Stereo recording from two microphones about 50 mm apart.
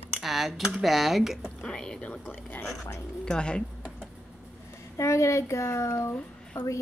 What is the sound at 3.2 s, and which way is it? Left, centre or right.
Speech, centre.